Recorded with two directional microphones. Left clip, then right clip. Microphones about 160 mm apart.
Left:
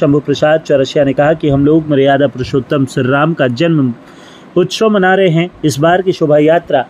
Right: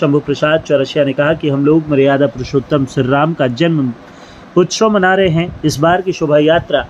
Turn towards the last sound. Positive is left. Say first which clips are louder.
# left 2 dB
turn(degrees=25)  # may be behind; listen again after turning